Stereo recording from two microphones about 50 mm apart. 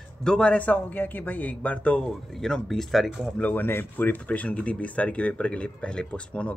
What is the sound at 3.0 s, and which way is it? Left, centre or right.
Speech, centre.